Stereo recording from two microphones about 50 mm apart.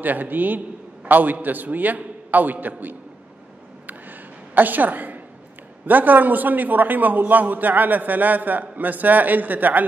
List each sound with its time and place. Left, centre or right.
0.0 s a man's voice: right
4.6 s a man's voice: right